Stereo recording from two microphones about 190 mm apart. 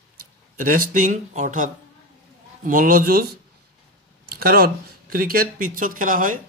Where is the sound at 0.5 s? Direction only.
50° right (ahead or behind).